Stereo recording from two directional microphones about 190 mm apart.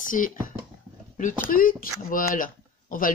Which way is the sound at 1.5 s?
45° left (ahead or behind).